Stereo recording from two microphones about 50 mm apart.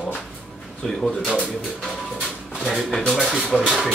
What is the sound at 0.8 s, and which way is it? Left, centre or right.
Speech, centre.